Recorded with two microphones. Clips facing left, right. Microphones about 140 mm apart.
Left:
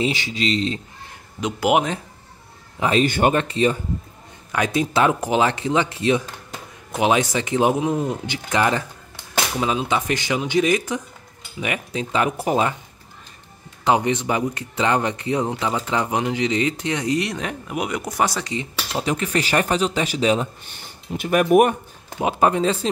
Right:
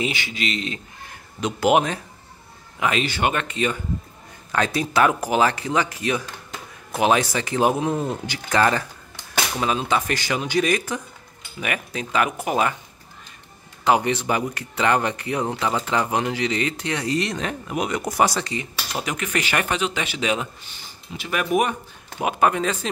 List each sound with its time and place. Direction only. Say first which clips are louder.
0.0 s speech: left 4 dB; 30° left (ahead or behind)
1.4 s speech: even; 15° left (ahead or behind)
2.8 s speech: left 4 dB; 35° left (ahead or behind)
4.5 s speech: left 2 dB; 15° left (ahead or behind)
13.8 s speech: left 1 dB; 20° left (ahead or behind)
18.0 s speech: right 4 dB; centre (ahead or behind)
18.4 s speech: left 2 dB; 20° left (ahead or behind)
20.7 s speech: left 7 dB; 50° left (ahead or behind)
22.2 s speech: left 2 dB; 30° left (ahead or behind)